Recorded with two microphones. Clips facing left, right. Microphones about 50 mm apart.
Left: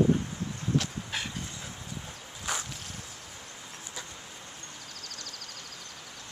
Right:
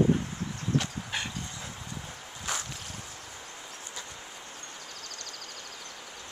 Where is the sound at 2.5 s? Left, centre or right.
Centre.